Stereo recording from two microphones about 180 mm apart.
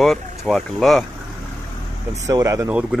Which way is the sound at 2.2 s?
15° right (ahead or behind).